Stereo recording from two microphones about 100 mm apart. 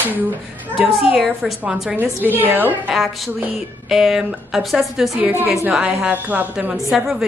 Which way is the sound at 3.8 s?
5° right (ahead or behind).